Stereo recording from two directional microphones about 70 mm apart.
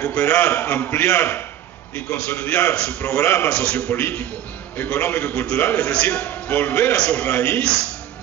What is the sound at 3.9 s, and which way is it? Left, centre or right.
A man's voice, left.